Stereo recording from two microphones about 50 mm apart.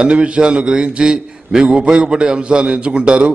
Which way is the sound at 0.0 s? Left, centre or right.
Right.